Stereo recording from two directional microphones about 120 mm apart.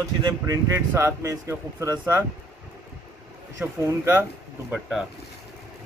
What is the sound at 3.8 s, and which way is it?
Speech, 20° right (ahead or behind).